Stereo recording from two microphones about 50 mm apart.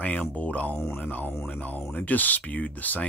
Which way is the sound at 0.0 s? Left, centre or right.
Left.